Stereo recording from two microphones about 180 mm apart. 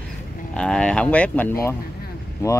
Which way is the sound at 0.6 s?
5° left (ahead or behind).